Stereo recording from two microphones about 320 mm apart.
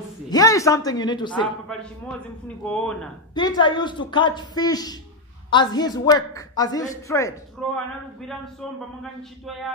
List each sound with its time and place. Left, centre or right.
0.3 s speech: centre
1.7 s a man's voice: centre
3.3 s a man's voice: centre